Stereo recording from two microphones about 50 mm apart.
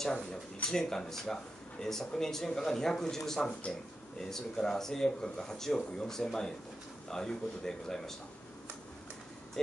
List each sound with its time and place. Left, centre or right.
0.7 s speech: centre